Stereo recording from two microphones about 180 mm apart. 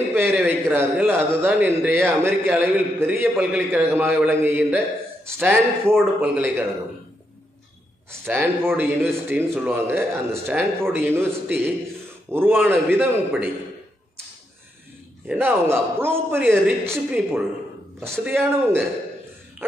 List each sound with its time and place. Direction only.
0.1 s a man's voice: 10° right (ahead or behind)
8.3 s a man's voice: 10° right (ahead or behind)
15.2 s a man's voice: 10° right (ahead or behind)